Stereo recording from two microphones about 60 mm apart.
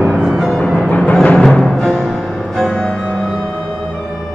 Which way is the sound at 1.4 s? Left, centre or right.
Centre.